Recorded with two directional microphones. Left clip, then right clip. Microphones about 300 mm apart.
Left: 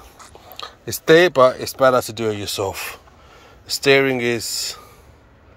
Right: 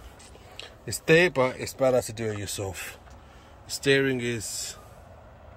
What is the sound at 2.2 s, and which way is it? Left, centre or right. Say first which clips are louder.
Speech: left 9 dB; centre.